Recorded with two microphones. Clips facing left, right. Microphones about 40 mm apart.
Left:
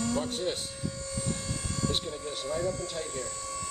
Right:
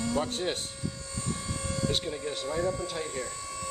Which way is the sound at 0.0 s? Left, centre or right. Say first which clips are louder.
Right 1 dB; centre.